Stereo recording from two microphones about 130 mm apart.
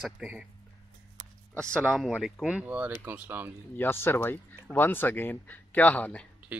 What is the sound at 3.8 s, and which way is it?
Speech, 15° left (ahead or behind).